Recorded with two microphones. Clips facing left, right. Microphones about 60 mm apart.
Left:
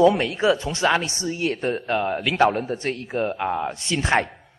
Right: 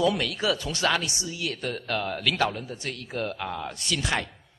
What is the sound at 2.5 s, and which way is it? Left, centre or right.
Speech, left.